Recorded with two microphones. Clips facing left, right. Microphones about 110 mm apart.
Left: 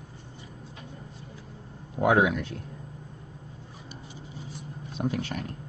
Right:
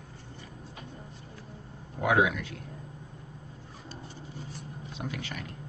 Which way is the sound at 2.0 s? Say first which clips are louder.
Left 3 dB; 35° left (ahead or behind).